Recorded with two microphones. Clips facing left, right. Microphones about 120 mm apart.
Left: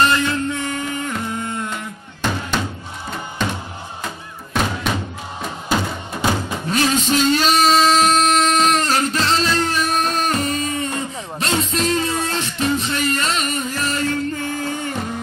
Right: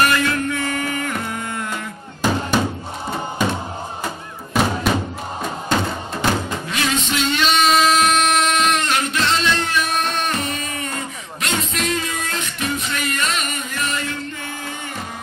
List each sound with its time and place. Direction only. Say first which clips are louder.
0.0 s music: left 1 dB; 25° left (ahead or behind)
5.4 s music: even; 5° left (ahead or behind)
6.7 s music: left 5 dB; 35° left (ahead or behind)
7.1 s a sound: left 4 dB; 40° left (ahead or behind)